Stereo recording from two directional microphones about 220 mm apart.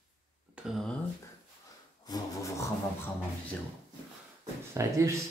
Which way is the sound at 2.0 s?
15° left (ahead or behind).